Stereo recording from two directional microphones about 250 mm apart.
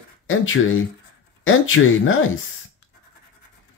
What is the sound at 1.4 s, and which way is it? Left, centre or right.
Speech, left.